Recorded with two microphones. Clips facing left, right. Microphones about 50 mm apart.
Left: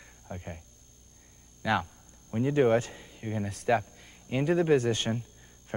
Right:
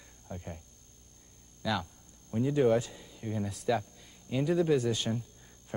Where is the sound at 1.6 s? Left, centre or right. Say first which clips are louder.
Left 5 dB; left.